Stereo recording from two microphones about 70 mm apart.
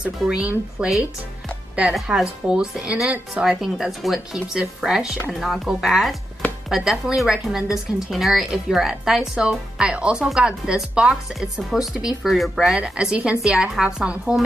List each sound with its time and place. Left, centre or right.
0.0 s a woman's voice: centre
2.1 s a woman's voice: centre
3.6 s a woman's voice: centre